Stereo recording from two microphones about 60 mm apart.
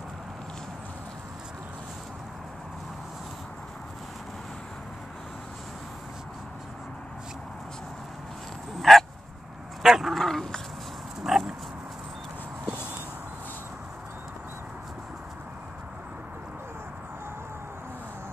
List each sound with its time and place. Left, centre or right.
8.7 s dog: centre
11.2 s dog: centre